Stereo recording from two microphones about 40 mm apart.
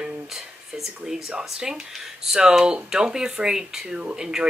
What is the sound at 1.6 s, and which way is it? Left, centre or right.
A woman's voice, centre.